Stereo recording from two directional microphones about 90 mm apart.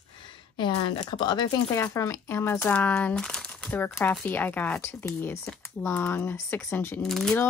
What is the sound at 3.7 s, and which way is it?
Speech, 20° left (ahead or behind).